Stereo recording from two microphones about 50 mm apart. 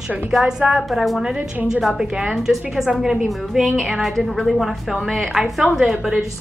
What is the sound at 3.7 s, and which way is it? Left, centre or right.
A woman's voice, centre.